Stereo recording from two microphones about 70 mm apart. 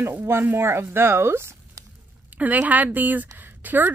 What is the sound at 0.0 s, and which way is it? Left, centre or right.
Speech, right.